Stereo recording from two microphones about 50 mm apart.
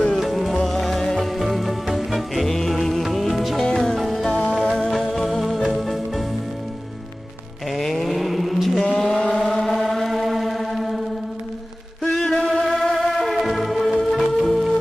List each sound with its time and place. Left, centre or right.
0.1 s music: centre
4.3 s music: left
4.6 s music: centre
7.7 s vehicle: centre
9.2 s vehicle: left
9.5 s music: centre
12.0 s chant: centre
12.6 s music: centre